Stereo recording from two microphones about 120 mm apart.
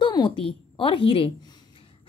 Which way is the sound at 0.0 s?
40° left (ahead or behind).